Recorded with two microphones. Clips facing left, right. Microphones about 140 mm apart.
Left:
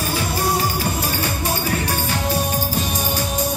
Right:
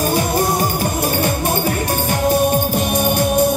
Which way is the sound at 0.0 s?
50° right (ahead or behind).